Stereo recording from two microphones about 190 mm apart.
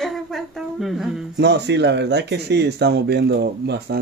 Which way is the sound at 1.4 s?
60° right (ahead or behind).